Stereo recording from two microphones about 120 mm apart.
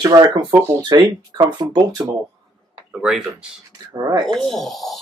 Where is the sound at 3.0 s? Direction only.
10° right (ahead or behind).